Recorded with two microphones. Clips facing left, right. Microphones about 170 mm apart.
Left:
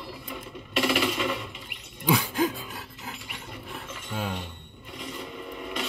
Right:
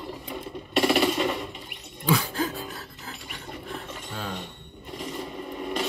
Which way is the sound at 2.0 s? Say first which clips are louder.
Left 1 dB; 15° left (ahead or behind).